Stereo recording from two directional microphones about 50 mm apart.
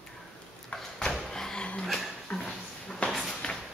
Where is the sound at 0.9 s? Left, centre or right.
Centre.